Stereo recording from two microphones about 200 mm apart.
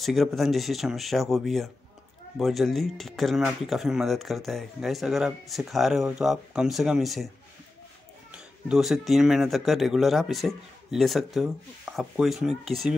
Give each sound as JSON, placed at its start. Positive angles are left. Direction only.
{"t": 0.0, "sound": "speech", "side_deg": 0}
{"t": 8.6, "sound": "speech", "side_deg": 0}